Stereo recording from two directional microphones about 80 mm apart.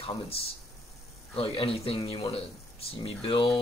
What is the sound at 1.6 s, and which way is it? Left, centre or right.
Speech, left.